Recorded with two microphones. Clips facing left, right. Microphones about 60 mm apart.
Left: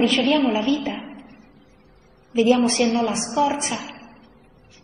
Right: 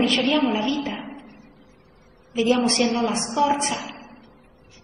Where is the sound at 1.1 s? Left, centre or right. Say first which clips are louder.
Even; right.